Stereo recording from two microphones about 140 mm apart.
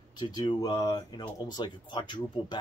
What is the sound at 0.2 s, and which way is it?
Speech, 30° left (ahead or behind).